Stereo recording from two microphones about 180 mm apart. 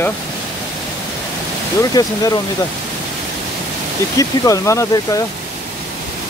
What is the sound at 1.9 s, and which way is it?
Speech, 20° left (ahead or behind).